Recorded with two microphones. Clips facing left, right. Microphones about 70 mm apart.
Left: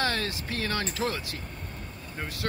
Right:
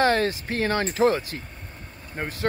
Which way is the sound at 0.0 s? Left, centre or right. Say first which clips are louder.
Right 8 dB; right.